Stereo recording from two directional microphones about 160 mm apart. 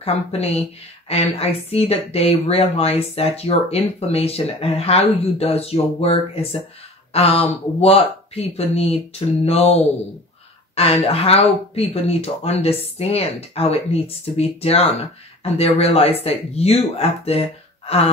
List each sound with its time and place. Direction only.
0.0 s speech: 40° left (ahead or behind)
10.8 s speech: 35° left (ahead or behind)